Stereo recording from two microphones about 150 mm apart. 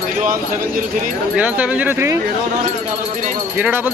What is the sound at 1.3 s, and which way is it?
Speech, 10° right (ahead or behind).